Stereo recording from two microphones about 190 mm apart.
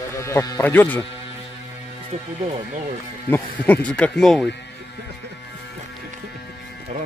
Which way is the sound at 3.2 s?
10° left (ahead or behind).